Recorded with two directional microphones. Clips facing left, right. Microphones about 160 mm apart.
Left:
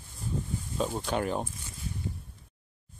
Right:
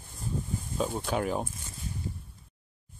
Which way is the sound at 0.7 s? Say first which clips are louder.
Even; centre (ahead or behind).